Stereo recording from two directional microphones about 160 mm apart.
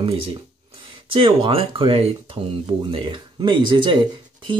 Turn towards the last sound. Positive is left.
turn(degrees=-30)  # may be behind; listen again after turning